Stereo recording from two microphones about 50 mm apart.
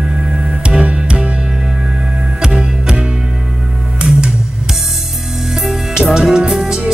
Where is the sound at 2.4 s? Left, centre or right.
Centre.